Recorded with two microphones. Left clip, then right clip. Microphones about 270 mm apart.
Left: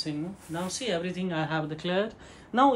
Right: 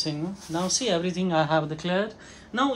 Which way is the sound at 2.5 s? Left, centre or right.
Centre.